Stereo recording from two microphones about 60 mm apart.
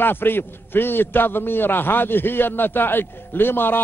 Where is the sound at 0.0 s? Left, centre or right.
Left.